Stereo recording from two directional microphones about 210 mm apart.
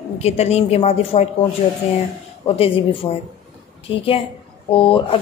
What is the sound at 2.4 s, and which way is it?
Speech, 25° left (ahead or behind).